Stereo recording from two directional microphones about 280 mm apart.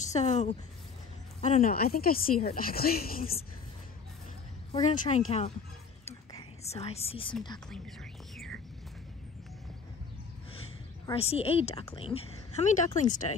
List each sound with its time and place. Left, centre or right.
0.0 s a woman's voice: left
4.7 s a woman's voice: left
6.0 s whispering: left
7.7 s speech: centre
11.1 s a woman's voice: left